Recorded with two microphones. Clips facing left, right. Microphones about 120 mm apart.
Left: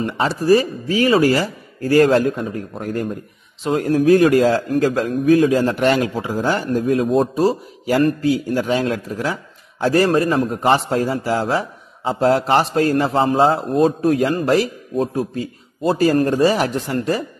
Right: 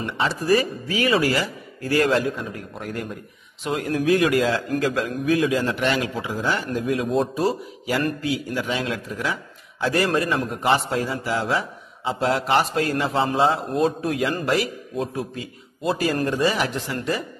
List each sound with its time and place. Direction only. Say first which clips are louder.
0.0 s a man's voice: left 5 dB; 40° left (ahead or behind)